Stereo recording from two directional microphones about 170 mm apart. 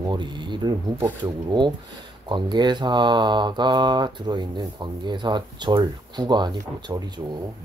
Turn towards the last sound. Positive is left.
turn(degrees=-25)  # may be behind; listen again after turning